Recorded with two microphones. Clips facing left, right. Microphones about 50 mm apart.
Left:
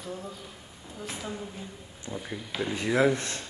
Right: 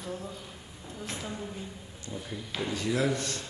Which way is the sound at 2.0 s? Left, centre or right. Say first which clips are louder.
Left 3 dB; left.